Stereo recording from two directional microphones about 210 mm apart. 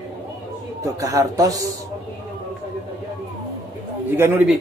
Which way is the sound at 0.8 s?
15° right (ahead or behind).